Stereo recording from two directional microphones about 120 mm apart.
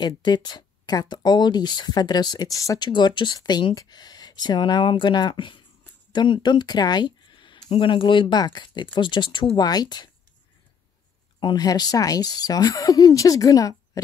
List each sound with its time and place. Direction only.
0.0 s speech: 35° left (ahead or behind)
2.9 s speech: 40° left (ahead or behind)
11.3 s speech: 35° left (ahead or behind)